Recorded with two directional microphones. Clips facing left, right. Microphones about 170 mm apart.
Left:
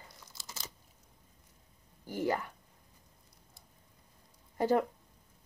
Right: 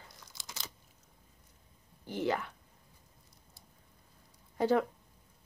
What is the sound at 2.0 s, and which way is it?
Speech, 10° left (ahead or behind).